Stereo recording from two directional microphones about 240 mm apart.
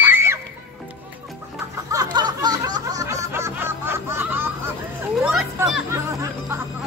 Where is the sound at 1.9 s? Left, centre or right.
Centre.